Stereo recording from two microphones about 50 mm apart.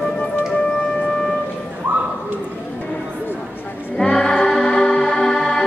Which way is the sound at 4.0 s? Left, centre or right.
Centre.